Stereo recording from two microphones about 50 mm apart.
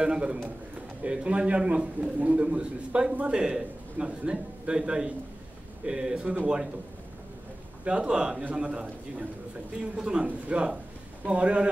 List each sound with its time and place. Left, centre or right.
0.0 s a man's voice: centre
7.8 s a man's voice: right
8.5 s a man's voice: right
9.8 s a man's voice: centre